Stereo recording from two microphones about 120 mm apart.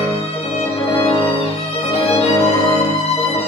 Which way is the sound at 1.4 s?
55° left (ahead or behind).